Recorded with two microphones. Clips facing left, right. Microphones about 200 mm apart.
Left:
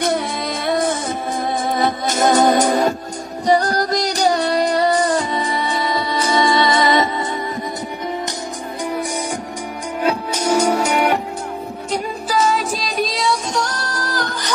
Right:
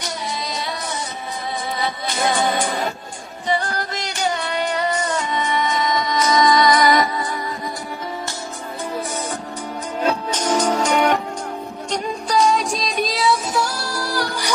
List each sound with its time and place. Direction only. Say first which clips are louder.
0.0 s music: left 8 dB; 55° left (ahead or behind); by 7.2 s 25° left (ahead or behind)
10.0 s music: left 2 dB; 10° left (ahead or behind); by 14.5 s 10° right (ahead or behind)